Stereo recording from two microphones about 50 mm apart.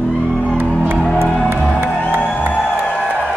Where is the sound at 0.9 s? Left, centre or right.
Centre.